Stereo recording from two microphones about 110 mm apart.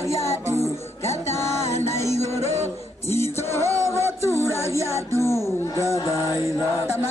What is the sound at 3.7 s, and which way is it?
Music, 25° left (ahead or behind).